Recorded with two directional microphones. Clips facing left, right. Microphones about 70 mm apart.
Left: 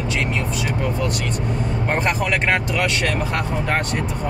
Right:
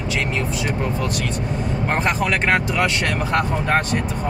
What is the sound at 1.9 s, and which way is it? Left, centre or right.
Speech, centre.